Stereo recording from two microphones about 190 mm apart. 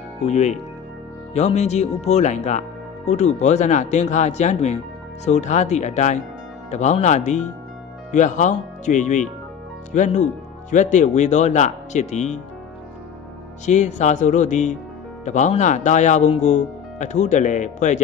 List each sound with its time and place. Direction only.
0.3 s speech: 35° left (ahead or behind)
13.7 s speech: 40° left (ahead or behind)